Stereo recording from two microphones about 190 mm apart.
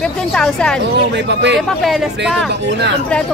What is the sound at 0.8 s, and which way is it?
Speech, 65° right (ahead or behind).